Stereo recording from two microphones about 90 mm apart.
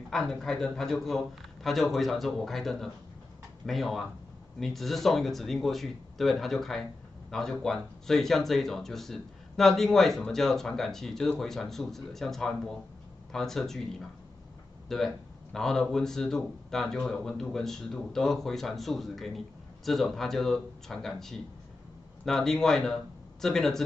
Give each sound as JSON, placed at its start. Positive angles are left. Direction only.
{"t": 0.1, "sound": "speech", "side_deg": 5}
{"t": 14.9, "sound": "speech", "side_deg": 5}